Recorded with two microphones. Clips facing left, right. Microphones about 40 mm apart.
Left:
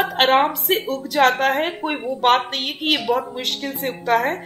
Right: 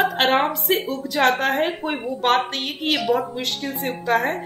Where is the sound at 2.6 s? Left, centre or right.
Left.